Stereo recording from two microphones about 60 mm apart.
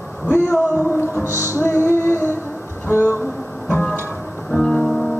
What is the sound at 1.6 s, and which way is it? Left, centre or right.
Music, left.